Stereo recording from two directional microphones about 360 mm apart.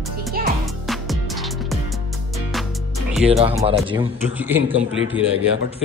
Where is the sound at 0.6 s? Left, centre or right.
Centre.